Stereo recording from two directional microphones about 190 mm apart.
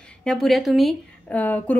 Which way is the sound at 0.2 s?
Centre (ahead or behind).